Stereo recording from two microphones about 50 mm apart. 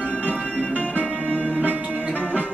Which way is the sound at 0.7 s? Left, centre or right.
Right.